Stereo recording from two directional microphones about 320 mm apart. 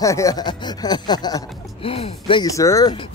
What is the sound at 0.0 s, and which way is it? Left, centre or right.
Speech, centre.